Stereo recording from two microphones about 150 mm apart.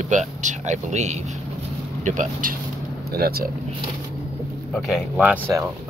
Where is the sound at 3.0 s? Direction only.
90° right.